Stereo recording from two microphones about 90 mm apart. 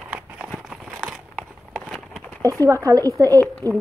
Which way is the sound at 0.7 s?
10° right (ahead or behind).